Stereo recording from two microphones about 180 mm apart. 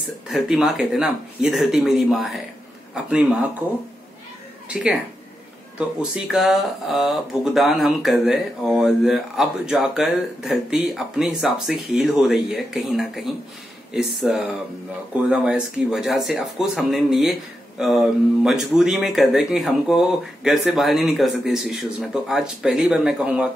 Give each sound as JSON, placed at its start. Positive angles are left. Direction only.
{"t": 0.3, "sound": "speech", "side_deg": 0}
{"t": 4.6, "sound": "speech", "side_deg": -5}